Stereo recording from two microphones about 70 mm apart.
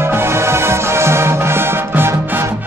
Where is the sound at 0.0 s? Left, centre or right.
Right.